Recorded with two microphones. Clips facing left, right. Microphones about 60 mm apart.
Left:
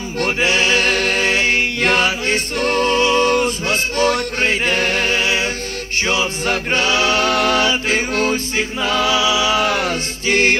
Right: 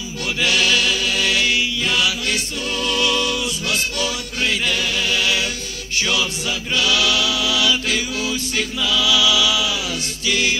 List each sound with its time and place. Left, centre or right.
0.4 s mantra: left
6.4 s a capella: left
8.8 s music: left